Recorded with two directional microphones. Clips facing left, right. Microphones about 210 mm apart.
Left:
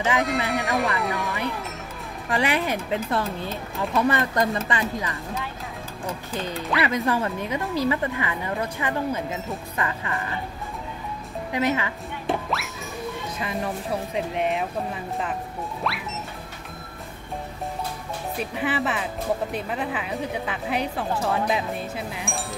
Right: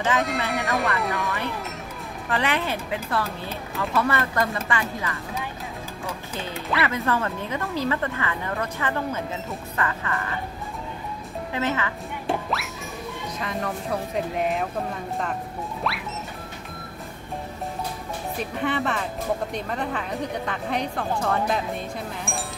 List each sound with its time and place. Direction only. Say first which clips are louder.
0.2 s a woman's voice: left 1 dB; centre (ahead or behind)
2.2 s speech: left 2 dB; 15° left (ahead or behind)
6.8 s speech: left 1 dB; 15° left (ahead or behind)
11.5 s speech: left 2 dB; 15° left (ahead or behind)
12.3 s music: even; centre (ahead or behind)
13.4 s a woman's voice: even; 5° left (ahead or behind)
15.8 s a woman's voice: even; centre (ahead or behind)
18.4 s a woman's voice: even; 5° left (ahead or behind)